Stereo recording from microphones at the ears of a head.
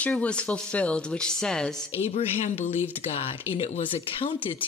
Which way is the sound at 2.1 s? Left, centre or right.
Left.